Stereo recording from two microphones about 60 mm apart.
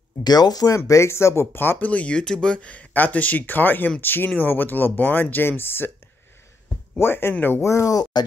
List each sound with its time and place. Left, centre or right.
0.5 s speech: left
0.7 s speech: left
1.8 s speech: left
7.0 s speech: left
7.6 s speech: left